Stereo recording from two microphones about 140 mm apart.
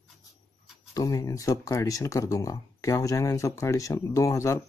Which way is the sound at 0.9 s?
25° left (ahead or behind).